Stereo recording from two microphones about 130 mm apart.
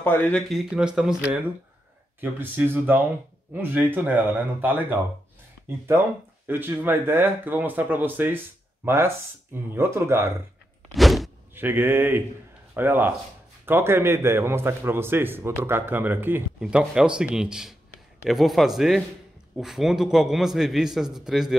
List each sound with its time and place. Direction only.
0.0 s speech: 15° left (ahead or behind)
0.7 s a man's voice: 5° right (ahead or behind)
10.9 s a sound: centre (ahead or behind)
11.5 s a man's voice: 15° right (ahead or behind)